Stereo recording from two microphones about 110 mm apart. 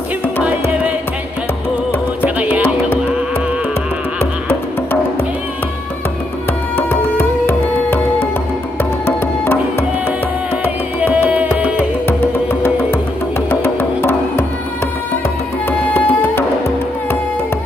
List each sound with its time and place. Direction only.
6.9 s music: 20° left (ahead or behind)
9.0 s music: 20° left (ahead or behind)
12.1 s music: 20° left (ahead or behind)
15.9 s tabla: 20° left (ahead or behind)